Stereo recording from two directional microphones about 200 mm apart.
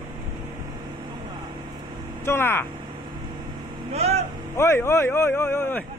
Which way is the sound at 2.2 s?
10° left (ahead or behind).